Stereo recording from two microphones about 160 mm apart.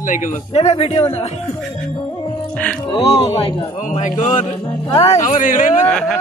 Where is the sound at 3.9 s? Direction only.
50° left (ahead or behind).